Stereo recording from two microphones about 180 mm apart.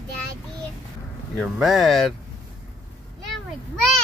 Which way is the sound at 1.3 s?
Centre (ahead or behind).